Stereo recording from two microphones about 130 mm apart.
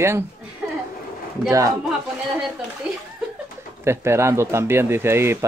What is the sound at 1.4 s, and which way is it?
Speech, 25° right (ahead or behind).